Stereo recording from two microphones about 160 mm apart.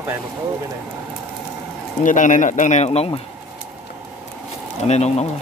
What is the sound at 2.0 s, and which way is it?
Speech, 50° left (ahead or behind).